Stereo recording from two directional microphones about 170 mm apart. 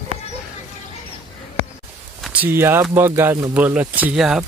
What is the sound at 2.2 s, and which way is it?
Speech, 10° right (ahead or behind).